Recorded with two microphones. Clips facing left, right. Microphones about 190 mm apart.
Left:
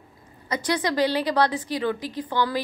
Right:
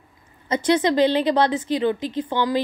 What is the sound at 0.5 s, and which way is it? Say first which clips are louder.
A woman's voice: right 6 dB; 25° right (ahead or behind).